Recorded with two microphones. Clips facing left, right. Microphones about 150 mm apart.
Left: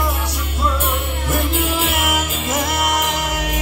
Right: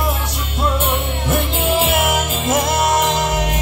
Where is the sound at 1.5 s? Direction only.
25° right (ahead or behind).